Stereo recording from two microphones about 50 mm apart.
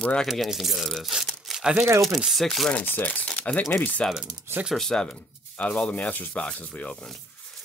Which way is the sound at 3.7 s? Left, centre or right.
Left.